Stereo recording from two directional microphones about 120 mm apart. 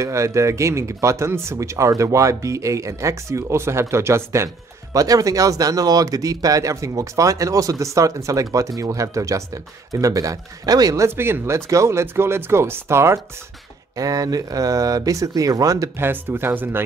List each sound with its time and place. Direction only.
0.0 s speech: 25° right (ahead or behind)